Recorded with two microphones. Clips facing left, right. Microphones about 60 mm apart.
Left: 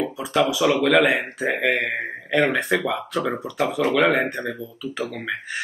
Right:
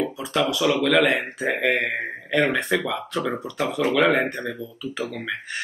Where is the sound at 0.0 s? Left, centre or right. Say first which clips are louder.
Left 2 dB; centre.